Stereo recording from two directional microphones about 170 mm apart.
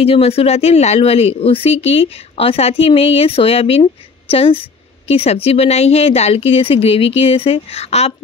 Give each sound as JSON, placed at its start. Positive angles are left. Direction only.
{"t": 0.0, "sound": "a woman's voice", "side_deg": 35}